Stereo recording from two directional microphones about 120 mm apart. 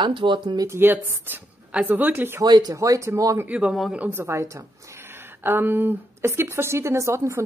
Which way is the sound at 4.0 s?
15° right (ahead or behind).